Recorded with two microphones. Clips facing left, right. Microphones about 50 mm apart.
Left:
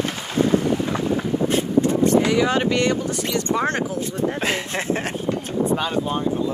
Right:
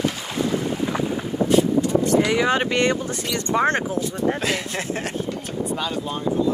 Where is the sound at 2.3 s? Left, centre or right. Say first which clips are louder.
Left 1 dB; right.